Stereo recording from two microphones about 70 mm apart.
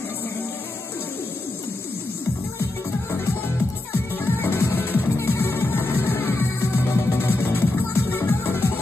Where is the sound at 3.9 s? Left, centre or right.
Left.